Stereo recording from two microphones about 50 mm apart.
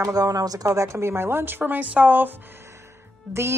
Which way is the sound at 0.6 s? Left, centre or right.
Right.